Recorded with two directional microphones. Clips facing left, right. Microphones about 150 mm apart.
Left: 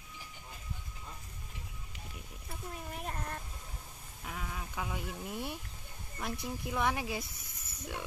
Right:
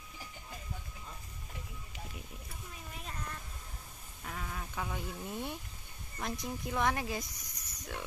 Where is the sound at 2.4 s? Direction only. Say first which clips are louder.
Left 6 dB; 55° left (ahead or behind).